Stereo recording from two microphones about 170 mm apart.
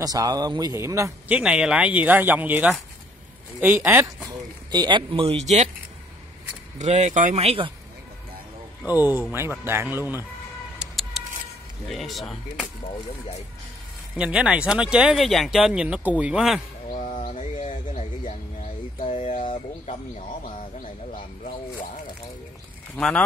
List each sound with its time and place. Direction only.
0.0 s speech: 20° right (ahead or behind)
1.4 s speech: 5° right (ahead or behind); by 5.7 s 40° right (ahead or behind)
6.8 s speech: 40° right (ahead or behind)
8.8 s speech: 10° right (ahead or behind)
10.8 s a sound: centre (ahead or behind)
11.9 s speech: centre (ahead or behind)
14.1 s speech: 5° right (ahead or behind)
17.3 s a sound: 45° left (ahead or behind)
19.4 s speech: 35° left (ahead or behind)
20.2 s a sound: 50° left (ahead or behind)
22.9 s speech: 5° left (ahead or behind)